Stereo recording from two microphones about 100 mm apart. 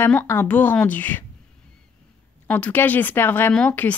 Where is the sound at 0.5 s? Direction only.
15° left (ahead or behind).